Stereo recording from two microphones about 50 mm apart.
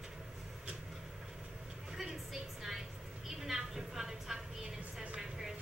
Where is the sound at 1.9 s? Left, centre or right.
Centre.